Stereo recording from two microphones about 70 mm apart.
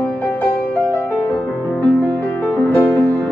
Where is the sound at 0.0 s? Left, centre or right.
Left.